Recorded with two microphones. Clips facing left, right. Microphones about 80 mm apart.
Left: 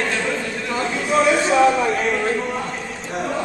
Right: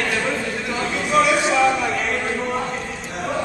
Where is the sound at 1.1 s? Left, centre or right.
Left.